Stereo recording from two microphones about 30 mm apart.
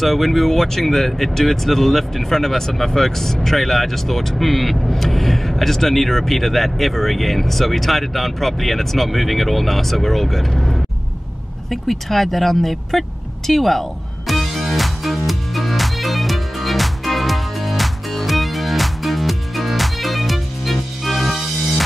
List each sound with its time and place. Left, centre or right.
0.0 s speech: centre
10.5 s speech: centre
11.7 s speech: centre
13.5 s music: centre